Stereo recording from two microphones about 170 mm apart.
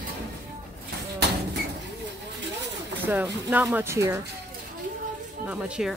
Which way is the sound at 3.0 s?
10° right (ahead or behind).